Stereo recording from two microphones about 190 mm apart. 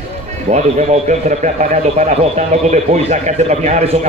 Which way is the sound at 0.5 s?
40° right (ahead or behind).